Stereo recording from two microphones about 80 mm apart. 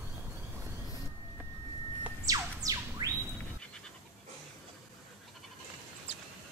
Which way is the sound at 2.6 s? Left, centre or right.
Right.